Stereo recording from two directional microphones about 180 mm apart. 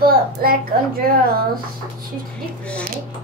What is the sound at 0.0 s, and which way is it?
Speech, 55° right (ahead or behind).